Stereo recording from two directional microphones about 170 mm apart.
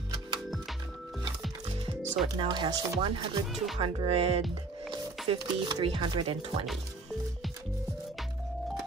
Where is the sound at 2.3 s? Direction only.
25° right (ahead or behind).